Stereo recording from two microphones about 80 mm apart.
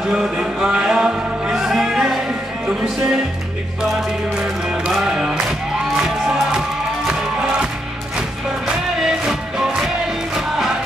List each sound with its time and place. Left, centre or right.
0.0 s music: centre
4.4 s music: centre
8.6 s music: centre